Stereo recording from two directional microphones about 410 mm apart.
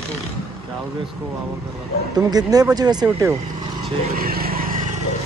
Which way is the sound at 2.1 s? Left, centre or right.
Centre.